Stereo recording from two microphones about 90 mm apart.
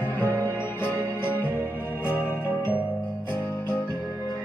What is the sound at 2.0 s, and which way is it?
Music, 25° left (ahead or behind).